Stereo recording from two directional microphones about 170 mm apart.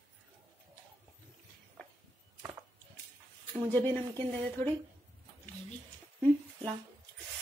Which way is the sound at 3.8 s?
10° left (ahead or behind).